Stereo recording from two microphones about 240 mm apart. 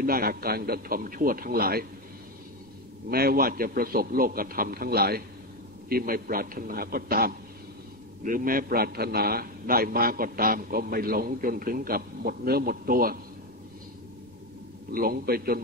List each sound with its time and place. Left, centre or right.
0.0 s a man's voice: right
3.1 s a man's voice: right
14.9 s a man's voice: right